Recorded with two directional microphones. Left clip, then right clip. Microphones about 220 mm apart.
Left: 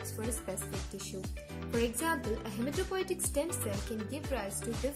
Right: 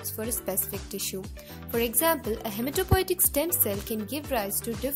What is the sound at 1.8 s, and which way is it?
Speech, 45° right (ahead or behind).